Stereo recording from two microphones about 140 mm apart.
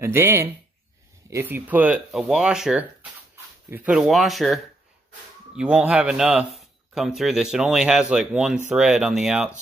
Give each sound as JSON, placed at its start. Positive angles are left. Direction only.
{"t": 0.0, "sound": "speech", "side_deg": -15}
{"t": 5.6, "sound": "speech", "side_deg": -5}